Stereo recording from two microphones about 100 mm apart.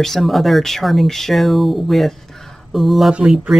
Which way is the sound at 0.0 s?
Centre (ahead or behind).